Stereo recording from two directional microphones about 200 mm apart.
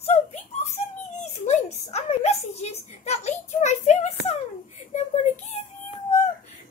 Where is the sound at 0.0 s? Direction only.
35° left (ahead or behind).